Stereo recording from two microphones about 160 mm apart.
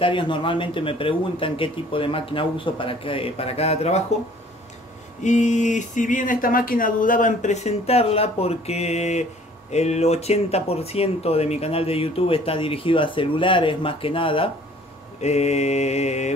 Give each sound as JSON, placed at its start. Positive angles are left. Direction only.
{"t": 0.0, "sound": "speech", "side_deg": 30}
{"t": 5.2, "sound": "speech", "side_deg": 50}